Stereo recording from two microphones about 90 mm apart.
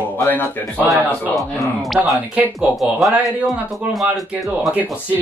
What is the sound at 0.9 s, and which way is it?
A man's voice, centre (ahead or behind).